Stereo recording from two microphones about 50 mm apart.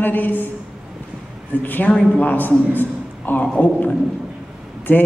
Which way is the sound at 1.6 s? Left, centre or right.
Left.